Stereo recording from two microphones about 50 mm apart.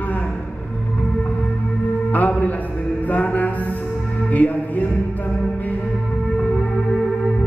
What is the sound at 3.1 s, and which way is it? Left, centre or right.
Mantra, left.